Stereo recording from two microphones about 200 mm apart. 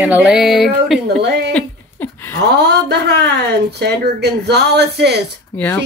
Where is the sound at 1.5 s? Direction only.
10° left (ahead or behind).